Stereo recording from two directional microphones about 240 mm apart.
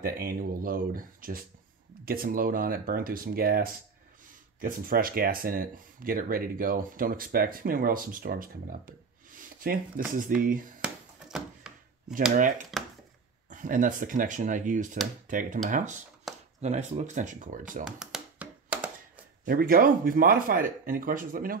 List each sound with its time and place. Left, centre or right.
0.0 s speech: right
10.8 s a sound: centre
12.4 s speech: right
16.3 s a sound: centre
16.6 s speech: right
17.8 s tap: centre
19.4 s speech: right